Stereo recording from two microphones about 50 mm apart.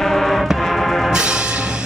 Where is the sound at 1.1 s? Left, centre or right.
Centre.